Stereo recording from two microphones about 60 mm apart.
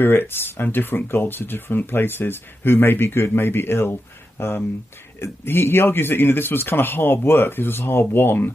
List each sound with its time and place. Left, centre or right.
0.0 s speech: left